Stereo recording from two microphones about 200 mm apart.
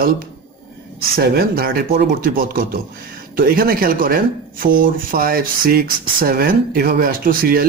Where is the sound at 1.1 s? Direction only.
50° right (ahead or behind).